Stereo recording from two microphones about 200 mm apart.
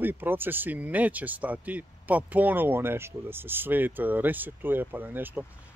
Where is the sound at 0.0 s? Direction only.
10° right (ahead or behind).